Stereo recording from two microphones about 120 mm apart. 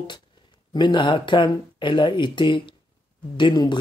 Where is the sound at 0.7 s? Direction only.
40° left (ahead or behind).